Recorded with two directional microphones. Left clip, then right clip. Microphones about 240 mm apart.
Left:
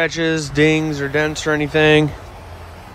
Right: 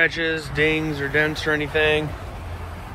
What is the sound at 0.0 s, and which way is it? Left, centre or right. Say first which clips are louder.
Speech: left 2 dB; left.